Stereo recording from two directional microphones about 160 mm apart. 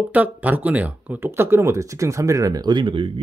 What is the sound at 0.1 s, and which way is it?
Speech, 10° right (ahead or behind).